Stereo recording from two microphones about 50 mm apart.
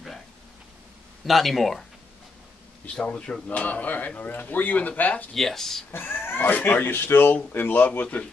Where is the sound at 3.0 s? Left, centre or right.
Left.